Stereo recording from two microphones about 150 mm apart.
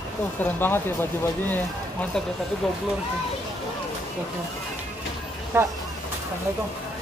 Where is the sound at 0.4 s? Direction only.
15° left (ahead or behind).